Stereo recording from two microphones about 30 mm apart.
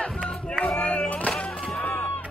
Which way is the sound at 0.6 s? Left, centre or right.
Left.